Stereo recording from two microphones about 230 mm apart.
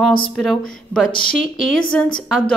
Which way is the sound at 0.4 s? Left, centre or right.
Centre.